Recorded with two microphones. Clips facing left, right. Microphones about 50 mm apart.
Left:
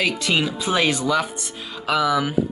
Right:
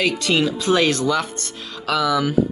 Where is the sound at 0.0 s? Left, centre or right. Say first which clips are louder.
Right 2 dB; centre.